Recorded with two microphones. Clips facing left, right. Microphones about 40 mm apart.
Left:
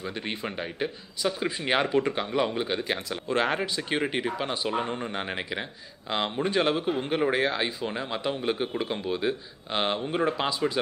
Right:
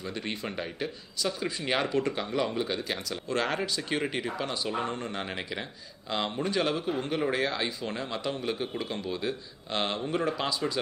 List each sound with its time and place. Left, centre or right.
0.0 s speech: centre